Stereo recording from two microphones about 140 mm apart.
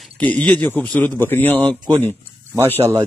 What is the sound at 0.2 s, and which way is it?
Speech, 10° left (ahead or behind).